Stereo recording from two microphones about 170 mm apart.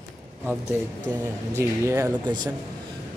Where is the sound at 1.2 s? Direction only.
15° right (ahead or behind).